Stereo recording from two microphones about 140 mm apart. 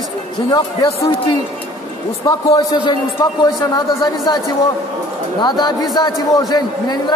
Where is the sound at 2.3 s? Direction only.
30° left (ahead or behind).